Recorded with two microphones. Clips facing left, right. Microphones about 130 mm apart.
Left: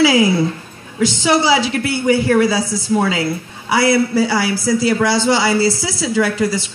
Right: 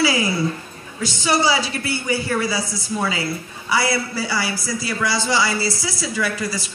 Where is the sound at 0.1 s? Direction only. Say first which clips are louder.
Left 7 dB; 60° left (ahead or behind).